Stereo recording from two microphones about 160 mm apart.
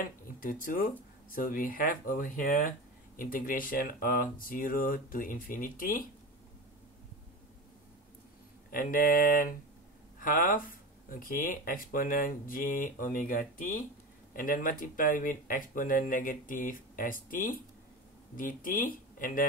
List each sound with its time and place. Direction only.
0.4 s speech: 60° left (ahead or behind)
8.6 s speech: 60° left (ahead or behind)